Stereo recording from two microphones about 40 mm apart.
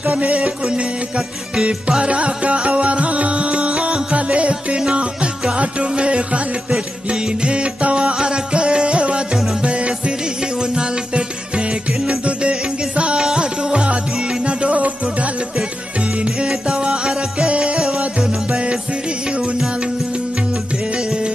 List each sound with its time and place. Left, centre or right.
0.0 s music: right
20.9 s music: right